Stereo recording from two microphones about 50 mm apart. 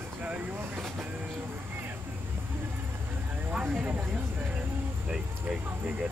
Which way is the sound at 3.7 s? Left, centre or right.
Right.